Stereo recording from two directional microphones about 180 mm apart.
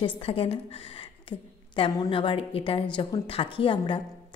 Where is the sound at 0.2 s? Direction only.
30° left (ahead or behind).